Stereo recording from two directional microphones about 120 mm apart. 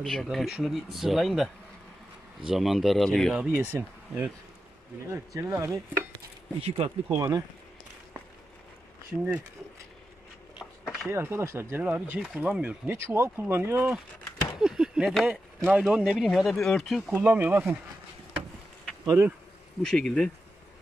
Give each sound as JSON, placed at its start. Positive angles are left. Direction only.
{"t": 0.0, "sound": "speech", "side_deg": 0}
{"t": 3.3, "sound": "speech", "side_deg": -15}
{"t": 6.6, "sound": "speech", "side_deg": -55}
{"t": 7.2, "sound": "speech", "side_deg": -30}
{"t": 11.1, "sound": "speech", "side_deg": -20}
{"t": 12.9, "sound": "speech", "side_deg": -20}
{"t": 14.6, "sound": "speech", "side_deg": -5}
{"t": 17.1, "sound": "speech", "side_deg": -15}
{"t": 19.0, "sound": "speech", "side_deg": -20}
{"t": 19.8, "sound": "speech", "side_deg": 5}